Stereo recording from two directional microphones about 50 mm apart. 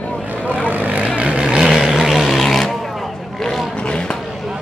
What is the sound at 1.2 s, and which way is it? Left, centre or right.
Vehicle, centre.